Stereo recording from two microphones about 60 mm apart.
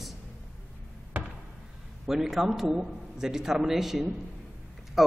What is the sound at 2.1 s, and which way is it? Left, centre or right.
A man's voice, centre.